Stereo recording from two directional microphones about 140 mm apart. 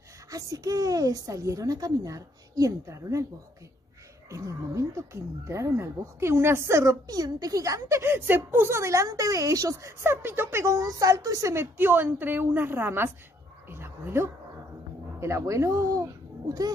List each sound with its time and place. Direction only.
0.3 s speech: 25° right (ahead or behind)
4.3 s speech: 20° right (ahead or behind)
13.7 s dog: 15° right (ahead or behind)
15.1 s speech: 20° right (ahead or behind)